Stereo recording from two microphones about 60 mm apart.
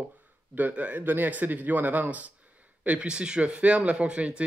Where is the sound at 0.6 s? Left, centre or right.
Right.